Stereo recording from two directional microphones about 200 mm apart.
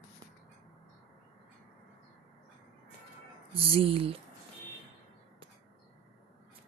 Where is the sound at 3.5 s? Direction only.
25° right (ahead or behind).